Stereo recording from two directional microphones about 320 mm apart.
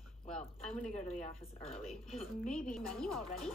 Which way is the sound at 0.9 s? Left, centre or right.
Centre.